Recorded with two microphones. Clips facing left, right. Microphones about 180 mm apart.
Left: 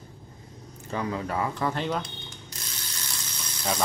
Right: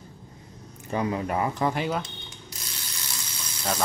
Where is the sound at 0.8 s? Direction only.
15° right (ahead or behind).